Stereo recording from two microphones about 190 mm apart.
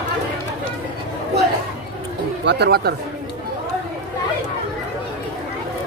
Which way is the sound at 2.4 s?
60° right (ahead or behind).